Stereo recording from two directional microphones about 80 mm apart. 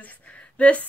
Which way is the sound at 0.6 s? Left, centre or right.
Centre.